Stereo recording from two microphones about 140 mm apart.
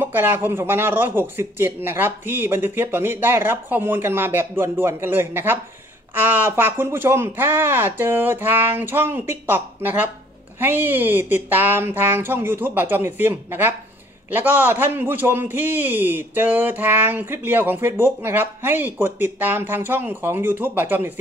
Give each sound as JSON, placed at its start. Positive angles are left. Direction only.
{"t": 0.0, "sound": "a man's voice", "side_deg": -15}